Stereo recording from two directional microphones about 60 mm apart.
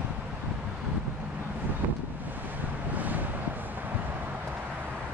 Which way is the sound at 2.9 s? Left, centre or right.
Right.